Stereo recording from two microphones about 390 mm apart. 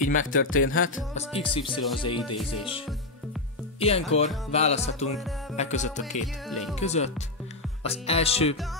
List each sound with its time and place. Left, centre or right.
0.0 s speech: centre
0.3 s speech: left
1.1 s speech: centre
3.8 s speech: centre
5.1 s music: centre
5.6 s speech: centre